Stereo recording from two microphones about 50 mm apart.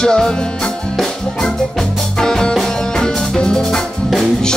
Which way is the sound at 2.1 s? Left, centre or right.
Centre.